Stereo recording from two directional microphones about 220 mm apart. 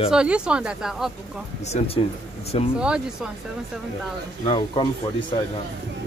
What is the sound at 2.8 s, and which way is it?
Speech, 5° right (ahead or behind).